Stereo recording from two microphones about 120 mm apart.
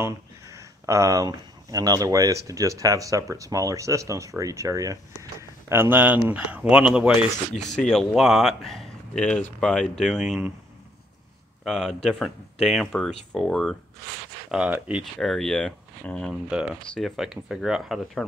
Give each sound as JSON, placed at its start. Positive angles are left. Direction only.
{"t": 0.0, "sound": "a man's voice", "side_deg": -25}
{"t": 7.7, "sound": "speech", "side_deg": 5}
{"t": 11.6, "sound": "speech", "side_deg": 5}
{"t": 14.5, "sound": "speech", "side_deg": -10}
{"t": 15.1, "sound": "speech", "side_deg": 5}
{"t": 16.4, "sound": "speech", "side_deg": -5}